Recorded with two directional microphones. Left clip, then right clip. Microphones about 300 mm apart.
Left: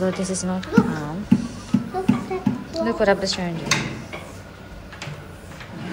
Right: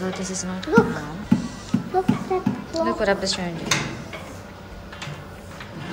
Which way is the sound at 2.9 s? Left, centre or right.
Centre.